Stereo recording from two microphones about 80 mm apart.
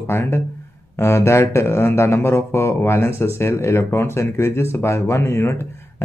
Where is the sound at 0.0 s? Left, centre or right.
Left.